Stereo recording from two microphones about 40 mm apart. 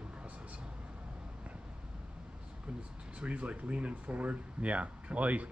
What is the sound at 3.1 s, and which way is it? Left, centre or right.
Speech, right.